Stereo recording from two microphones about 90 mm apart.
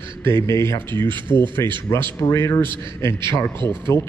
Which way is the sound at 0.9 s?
60° right (ahead or behind).